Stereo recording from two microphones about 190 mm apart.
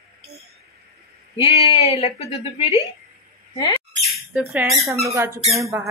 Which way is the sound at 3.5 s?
25° left (ahead or behind).